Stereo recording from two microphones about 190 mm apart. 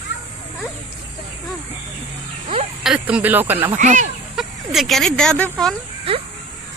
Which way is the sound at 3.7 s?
40° right (ahead or behind).